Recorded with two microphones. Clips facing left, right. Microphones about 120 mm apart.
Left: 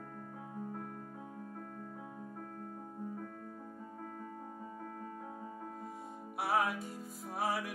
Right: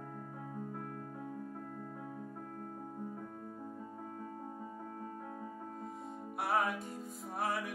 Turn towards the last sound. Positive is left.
turn(degrees=0)  # may be behind; listen again after turning